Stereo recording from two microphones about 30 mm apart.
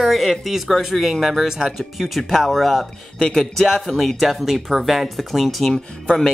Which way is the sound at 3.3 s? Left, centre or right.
Centre.